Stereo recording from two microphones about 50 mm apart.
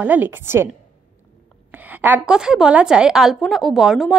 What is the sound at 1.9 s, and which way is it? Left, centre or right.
Speech, right.